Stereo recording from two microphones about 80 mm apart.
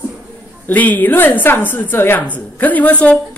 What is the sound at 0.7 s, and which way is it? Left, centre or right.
A woman's voice, left.